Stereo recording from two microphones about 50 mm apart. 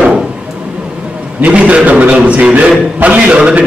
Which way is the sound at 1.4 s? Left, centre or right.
Right.